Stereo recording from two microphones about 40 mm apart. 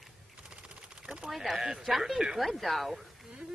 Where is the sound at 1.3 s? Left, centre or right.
Centre.